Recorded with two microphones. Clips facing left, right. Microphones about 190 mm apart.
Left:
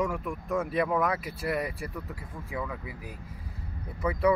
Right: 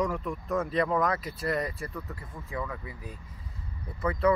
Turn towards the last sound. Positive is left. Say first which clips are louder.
# even
turn(degrees=10)  # may be behind; listen again after turning